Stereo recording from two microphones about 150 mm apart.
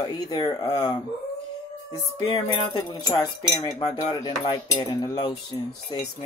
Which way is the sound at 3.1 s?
20° left (ahead or behind).